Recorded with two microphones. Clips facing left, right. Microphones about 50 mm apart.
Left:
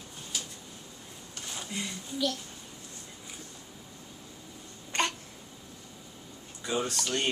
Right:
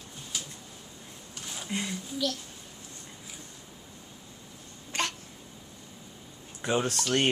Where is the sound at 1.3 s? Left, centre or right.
Centre.